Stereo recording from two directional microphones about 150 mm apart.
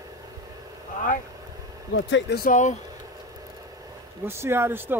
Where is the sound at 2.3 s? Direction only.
65° left (ahead or behind).